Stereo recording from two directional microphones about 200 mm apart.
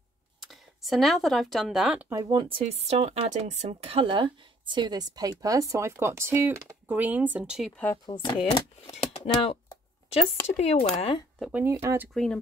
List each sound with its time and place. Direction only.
0.5 s speech: centre (ahead or behind)
8.1 s speech: 25° left (ahead or behind)
11.3 s speech: centre (ahead or behind)
11.6 s speech: 15° right (ahead or behind)
12.1 s speech: centre (ahead or behind)